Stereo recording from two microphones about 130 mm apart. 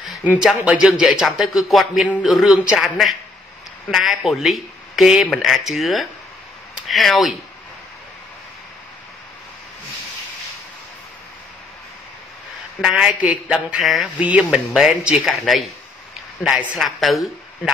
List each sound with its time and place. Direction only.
0.2 s speech: 10° right (ahead or behind)
12.8 s speech: 5° right (ahead or behind)